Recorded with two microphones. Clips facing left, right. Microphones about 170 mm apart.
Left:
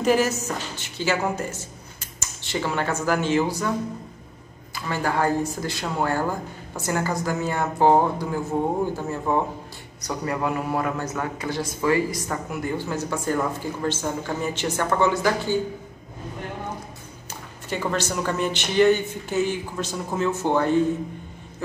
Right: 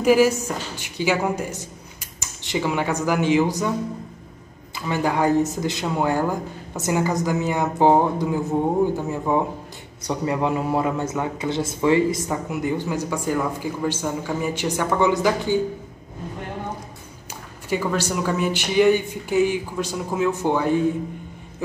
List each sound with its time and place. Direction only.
0.0 s a woman's voice: 10° right (ahead or behind)
4.7 s a man's voice: 15° right (ahead or behind)
17.6 s a man's voice: 10° right (ahead or behind)